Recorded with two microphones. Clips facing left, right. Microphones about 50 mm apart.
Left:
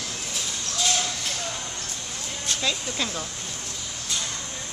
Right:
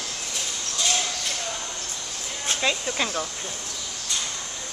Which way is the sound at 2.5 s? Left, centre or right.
Right.